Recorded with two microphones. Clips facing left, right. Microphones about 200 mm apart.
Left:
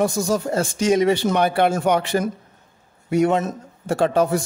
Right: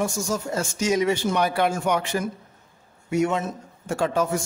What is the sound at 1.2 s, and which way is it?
Speech, 55° left (ahead or behind).